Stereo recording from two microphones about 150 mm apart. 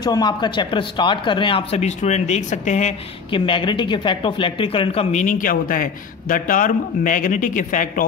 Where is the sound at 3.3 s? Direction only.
35° left (ahead or behind).